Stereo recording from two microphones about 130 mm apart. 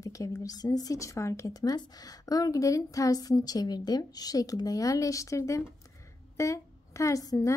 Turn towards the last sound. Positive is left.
turn(degrees=25)  # may be behind; listen again after turning